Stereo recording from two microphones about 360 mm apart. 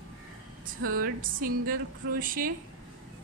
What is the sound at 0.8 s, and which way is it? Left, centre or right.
Music, right.